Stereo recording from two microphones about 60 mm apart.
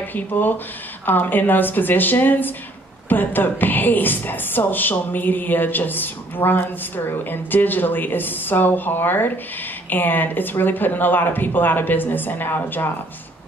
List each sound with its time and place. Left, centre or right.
0.0 s a woman's voice: left